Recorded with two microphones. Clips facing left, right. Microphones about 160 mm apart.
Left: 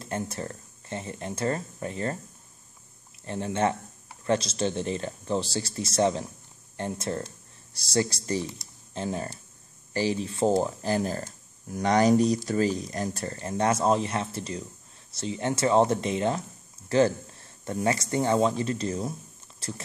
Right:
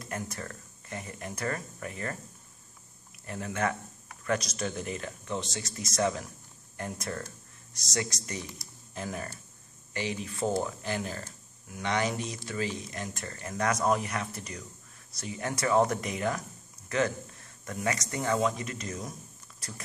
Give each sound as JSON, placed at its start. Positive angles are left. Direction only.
{"t": 0.0, "sound": "speech", "side_deg": 30}
{"t": 3.3, "sound": "speech", "side_deg": 30}